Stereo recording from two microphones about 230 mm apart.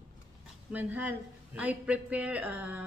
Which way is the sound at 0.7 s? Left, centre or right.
Centre.